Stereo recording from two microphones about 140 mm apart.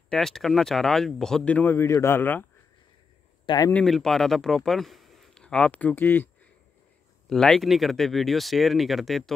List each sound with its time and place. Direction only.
0.1 s speech: 5° left (ahead or behind)
3.4 s speech: 30° left (ahead or behind)
3.7 s speech: centre (ahead or behind)
7.2 s speech: 5° left (ahead or behind)